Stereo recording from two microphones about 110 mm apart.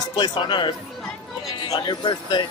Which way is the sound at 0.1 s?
45° left (ahead or behind).